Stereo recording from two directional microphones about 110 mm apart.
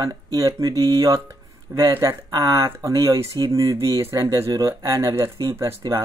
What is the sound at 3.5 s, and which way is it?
Speech, 30° right (ahead or behind).